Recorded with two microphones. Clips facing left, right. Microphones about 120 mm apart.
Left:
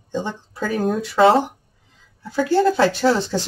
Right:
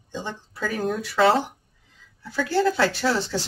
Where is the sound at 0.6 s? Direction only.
Centre (ahead or behind).